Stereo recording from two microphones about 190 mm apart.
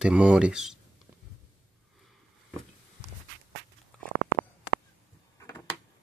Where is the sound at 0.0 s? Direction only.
5° right (ahead or behind).